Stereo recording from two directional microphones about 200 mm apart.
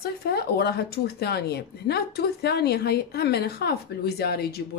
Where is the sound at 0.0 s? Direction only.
50° left (ahead or behind).